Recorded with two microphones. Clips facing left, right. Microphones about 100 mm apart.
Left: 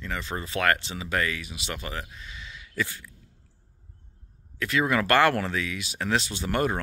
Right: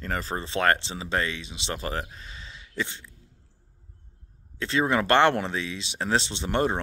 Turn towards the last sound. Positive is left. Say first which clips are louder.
# right 1 dB
turn(degrees=-25)  # may be behind; listen again after turning